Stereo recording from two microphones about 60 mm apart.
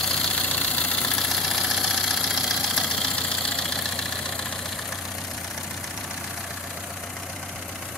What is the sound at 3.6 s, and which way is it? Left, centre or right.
Vehicle, centre.